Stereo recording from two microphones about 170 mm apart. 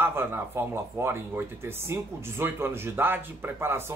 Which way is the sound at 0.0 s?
15° right (ahead or behind).